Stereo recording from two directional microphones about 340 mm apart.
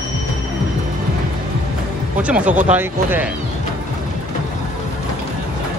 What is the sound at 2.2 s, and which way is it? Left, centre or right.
Speech, centre.